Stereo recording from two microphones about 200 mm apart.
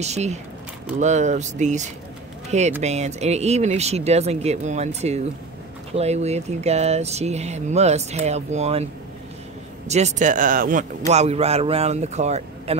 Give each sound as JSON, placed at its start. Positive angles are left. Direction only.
{"t": 0.0, "sound": "speech", "side_deg": -35}
{"t": 9.8, "sound": "speech", "side_deg": -35}